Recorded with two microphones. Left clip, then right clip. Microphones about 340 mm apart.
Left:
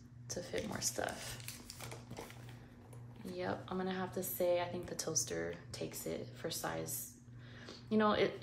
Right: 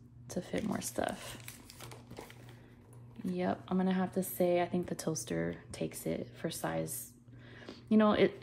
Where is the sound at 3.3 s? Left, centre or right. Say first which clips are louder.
Right 5 dB; right.